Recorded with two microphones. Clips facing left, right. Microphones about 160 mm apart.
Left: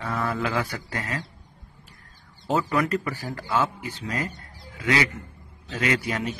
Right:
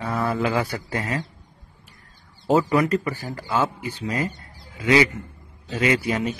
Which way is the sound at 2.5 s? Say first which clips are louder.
Right 5 dB; centre (ahead or behind).